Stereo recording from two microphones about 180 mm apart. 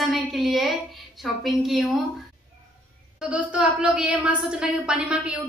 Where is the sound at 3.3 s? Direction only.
5° right (ahead or behind).